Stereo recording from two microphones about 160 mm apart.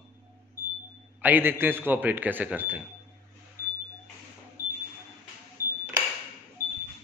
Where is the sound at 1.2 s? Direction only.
10° right (ahead or behind).